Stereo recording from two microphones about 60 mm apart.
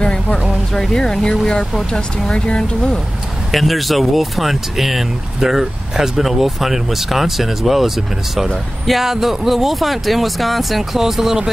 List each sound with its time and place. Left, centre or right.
0.0 s a sound: centre
0.7 s speech: centre
3.5 s speech: centre